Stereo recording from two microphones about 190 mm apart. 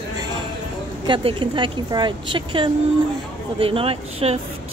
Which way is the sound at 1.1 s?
25° right (ahead or behind).